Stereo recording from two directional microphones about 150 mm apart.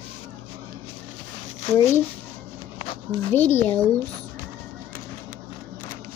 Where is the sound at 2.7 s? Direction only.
35° left (ahead or behind).